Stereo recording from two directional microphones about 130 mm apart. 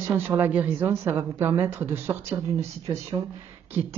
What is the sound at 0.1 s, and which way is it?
A woman's voice, 15° right (ahead or behind).